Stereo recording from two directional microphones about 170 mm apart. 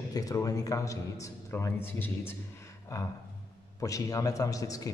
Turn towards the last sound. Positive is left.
turn(degrees=20)  # may be behind; listen again after turning